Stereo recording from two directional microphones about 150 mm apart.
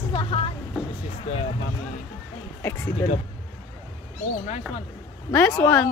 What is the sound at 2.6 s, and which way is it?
Speech, 15° left (ahead or behind).